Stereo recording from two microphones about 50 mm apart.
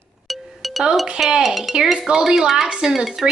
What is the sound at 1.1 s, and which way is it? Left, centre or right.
A woman's voice, centre.